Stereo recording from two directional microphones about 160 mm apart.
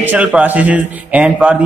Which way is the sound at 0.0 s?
10° right (ahead or behind).